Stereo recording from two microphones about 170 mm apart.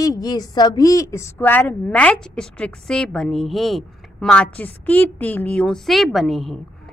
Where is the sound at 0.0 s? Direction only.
20° left (ahead or behind); by 6.6 s centre (ahead or behind).